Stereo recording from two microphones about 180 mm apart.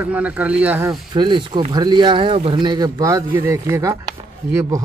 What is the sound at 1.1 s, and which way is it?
A man's voice, 25° right (ahead or behind).